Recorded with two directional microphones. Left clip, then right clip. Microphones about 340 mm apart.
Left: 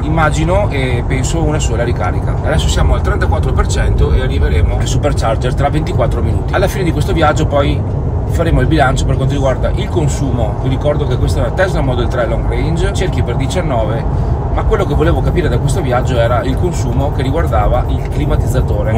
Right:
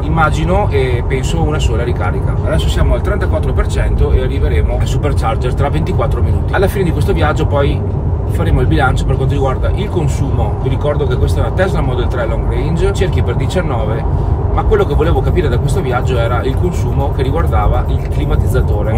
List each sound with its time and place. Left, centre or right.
0.1 s speech: centre
5.0 s speech: centre
11.5 s speech: centre
14.7 s speech: centre